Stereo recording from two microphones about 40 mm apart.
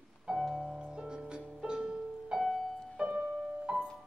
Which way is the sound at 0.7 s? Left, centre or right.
Right.